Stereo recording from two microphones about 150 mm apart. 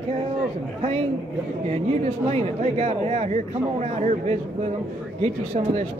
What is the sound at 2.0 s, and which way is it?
Speech, 50° right (ahead or behind).